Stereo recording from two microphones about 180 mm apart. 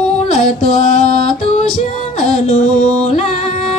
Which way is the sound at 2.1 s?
40° left (ahead or behind).